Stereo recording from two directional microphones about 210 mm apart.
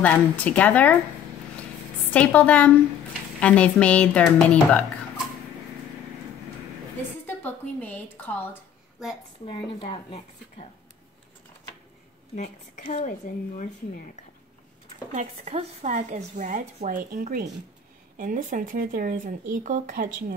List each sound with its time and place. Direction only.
0.0 s a woman's voice: 5° left (ahead or behind)
2.1 s a woman's voice: 5° left (ahead or behind)
7.2 s speech: 10° left (ahead or behind)
9.5 s speech: 25° left (ahead or behind)
12.4 s a woman's voice: 35° left (ahead or behind)
15.1 s a woman's voice: 35° right (ahead or behind)